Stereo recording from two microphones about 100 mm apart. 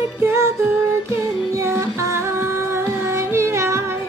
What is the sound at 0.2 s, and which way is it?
Music, 25° right (ahead or behind).